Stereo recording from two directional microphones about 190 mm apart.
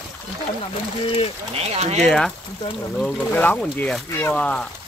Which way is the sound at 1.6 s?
35° right (ahead or behind).